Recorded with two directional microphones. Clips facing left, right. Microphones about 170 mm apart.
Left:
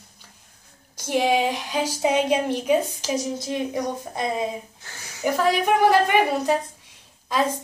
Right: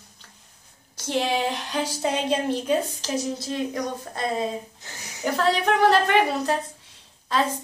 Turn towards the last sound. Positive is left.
turn(degrees=10)  # may be behind; listen again after turning